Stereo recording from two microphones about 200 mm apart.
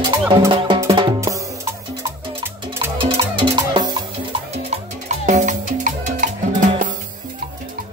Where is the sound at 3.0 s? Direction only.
25° right (ahead or behind).